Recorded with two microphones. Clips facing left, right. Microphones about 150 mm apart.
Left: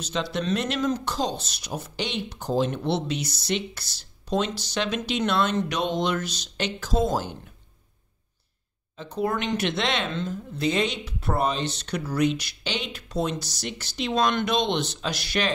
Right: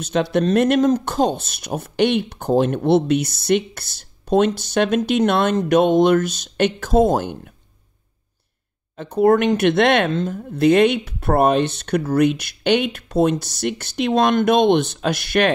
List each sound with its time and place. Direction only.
0.0 s speech: 55° right (ahead or behind)
8.9 s speech: 55° right (ahead or behind)